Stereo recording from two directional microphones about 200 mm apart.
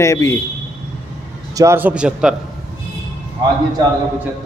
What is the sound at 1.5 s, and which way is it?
Speech, 15° right (ahead or behind).